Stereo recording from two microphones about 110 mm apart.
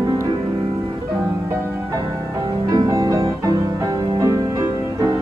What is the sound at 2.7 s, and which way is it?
Music, 35° right (ahead or behind).